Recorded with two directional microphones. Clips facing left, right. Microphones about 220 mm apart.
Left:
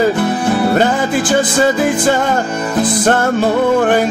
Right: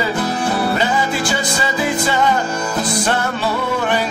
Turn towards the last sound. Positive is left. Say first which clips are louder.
# left 8 dB
turn(degrees=50)  # may be behind; listen again after turning